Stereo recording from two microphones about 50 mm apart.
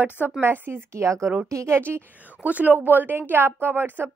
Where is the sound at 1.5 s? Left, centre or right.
Right.